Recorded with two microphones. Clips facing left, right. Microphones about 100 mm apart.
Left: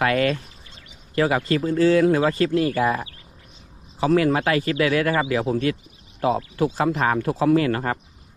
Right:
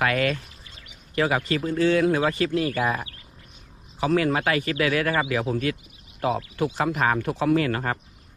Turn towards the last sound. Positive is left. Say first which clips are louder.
# left 3 dB
turn(degrees=35)  # may be behind; listen again after turning